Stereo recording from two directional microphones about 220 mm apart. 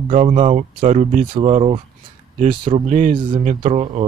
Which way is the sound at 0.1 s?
35° right (ahead or behind).